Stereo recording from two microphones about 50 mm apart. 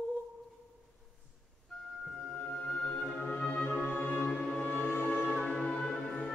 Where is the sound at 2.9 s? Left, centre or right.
Left.